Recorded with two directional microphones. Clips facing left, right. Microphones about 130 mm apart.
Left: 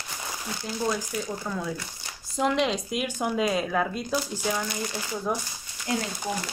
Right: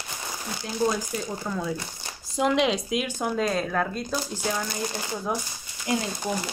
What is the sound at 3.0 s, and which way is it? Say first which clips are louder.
Speech: even; 10° left (ahead or behind).